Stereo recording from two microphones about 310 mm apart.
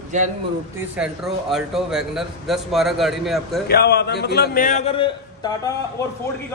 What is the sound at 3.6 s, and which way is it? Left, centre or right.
A man's voice, left.